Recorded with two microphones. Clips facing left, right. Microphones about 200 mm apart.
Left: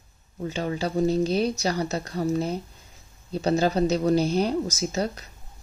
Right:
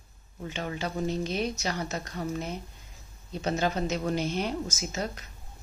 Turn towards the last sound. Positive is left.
turn(degrees=35)  # may be behind; listen again after turning